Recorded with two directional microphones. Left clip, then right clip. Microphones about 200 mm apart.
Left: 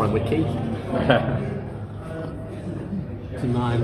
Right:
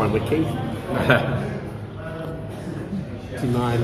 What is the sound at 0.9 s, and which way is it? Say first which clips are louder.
Speech: right 1 dB; 35° right (ahead or behind).